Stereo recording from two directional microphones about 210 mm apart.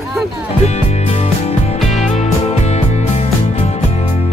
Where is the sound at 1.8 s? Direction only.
30° left (ahead or behind).